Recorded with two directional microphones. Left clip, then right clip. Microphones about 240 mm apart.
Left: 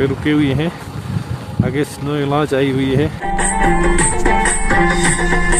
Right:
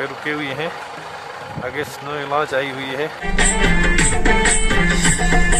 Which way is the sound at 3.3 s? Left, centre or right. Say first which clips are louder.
Left 2 dB; right.